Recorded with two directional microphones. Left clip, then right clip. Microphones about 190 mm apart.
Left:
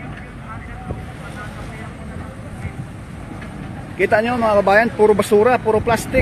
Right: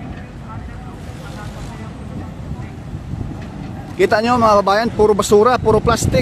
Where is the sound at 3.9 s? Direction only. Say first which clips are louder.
Right 2 dB; 15° right (ahead or behind).